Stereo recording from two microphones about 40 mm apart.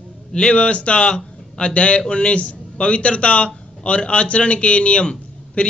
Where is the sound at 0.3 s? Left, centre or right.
Left.